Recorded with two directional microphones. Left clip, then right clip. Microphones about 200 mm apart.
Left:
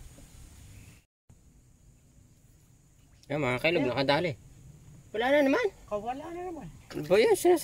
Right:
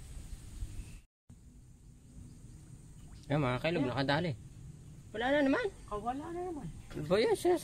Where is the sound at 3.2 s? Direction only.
45° left (ahead or behind).